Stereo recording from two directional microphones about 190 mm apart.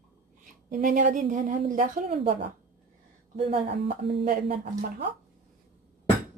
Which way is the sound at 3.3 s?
30° right (ahead or behind).